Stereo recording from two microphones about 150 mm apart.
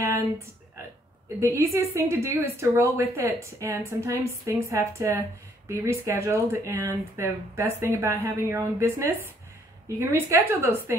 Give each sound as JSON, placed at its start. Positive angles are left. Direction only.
{"t": 1.4, "sound": "a woman's voice", "side_deg": -20}